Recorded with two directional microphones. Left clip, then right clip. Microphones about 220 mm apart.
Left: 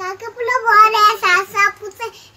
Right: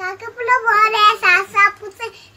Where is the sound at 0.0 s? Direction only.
Centre (ahead or behind).